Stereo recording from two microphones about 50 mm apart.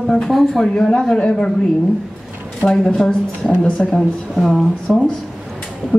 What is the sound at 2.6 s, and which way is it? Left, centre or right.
Speech, left.